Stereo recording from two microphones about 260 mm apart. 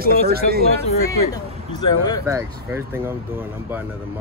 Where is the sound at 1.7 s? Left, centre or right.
Centre.